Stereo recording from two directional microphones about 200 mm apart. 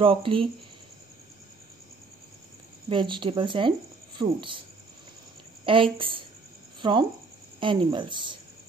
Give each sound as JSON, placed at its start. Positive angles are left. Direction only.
{"t": 0.0, "sound": "speech", "side_deg": -25}
{"t": 2.9, "sound": "speech", "side_deg": -25}
{"t": 5.7, "sound": "speech", "side_deg": -25}